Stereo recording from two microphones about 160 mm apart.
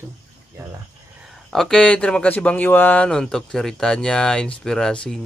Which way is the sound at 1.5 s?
5° left (ahead or behind).